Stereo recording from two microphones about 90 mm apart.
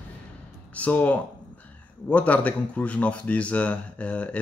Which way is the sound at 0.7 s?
15° left (ahead or behind).